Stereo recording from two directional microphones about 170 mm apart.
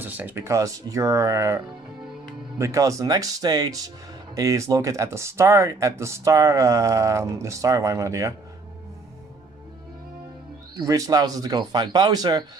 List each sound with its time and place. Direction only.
0.0 s speech: 10° right (ahead or behind)
2.6 s speech: 20° right (ahead or behind)
10.8 s speech: 20° right (ahead or behind)